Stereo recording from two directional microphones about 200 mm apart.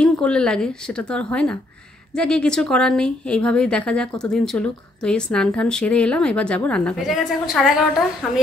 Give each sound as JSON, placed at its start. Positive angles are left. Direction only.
{"t": 0.0, "sound": "speech", "side_deg": 5}